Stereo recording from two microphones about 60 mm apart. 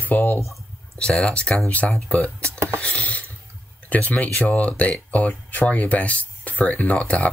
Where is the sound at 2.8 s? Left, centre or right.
Left.